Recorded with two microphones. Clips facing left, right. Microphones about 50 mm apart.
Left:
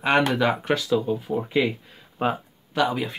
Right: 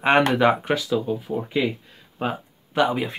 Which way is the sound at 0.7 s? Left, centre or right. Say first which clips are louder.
Left 1 dB; centre.